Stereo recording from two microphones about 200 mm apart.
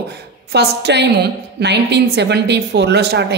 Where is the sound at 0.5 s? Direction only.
55° right (ahead or behind).